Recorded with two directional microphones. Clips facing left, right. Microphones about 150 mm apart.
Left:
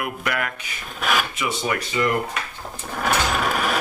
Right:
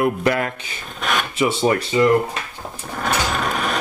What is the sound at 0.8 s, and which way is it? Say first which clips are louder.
Mechanisms: even; 5° left (ahead or behind).